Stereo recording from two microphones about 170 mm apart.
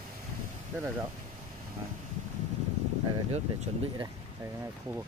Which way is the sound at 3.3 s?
40° right (ahead or behind).